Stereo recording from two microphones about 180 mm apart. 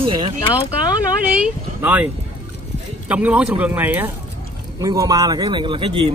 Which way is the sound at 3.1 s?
10° right (ahead or behind).